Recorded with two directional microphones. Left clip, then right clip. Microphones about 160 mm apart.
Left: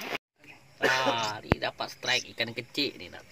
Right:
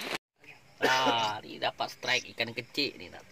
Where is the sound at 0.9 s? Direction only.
15° right (ahead or behind).